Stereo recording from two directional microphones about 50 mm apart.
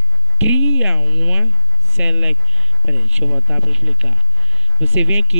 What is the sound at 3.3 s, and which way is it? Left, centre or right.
Speech, right.